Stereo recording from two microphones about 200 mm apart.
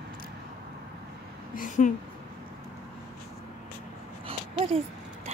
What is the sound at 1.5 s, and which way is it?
Speech, 40° left (ahead or behind).